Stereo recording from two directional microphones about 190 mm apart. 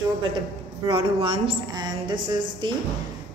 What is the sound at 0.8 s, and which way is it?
A woman's voice, 25° right (ahead or behind).